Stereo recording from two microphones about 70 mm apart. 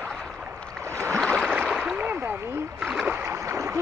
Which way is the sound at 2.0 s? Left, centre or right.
Right.